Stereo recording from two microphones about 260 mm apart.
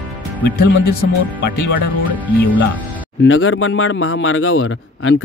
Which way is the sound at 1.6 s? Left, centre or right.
Left.